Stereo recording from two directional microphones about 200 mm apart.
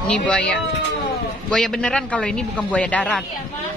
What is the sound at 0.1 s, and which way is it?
Speech, 5° left (ahead or behind).